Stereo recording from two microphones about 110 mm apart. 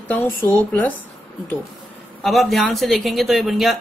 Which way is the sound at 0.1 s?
15° left (ahead or behind).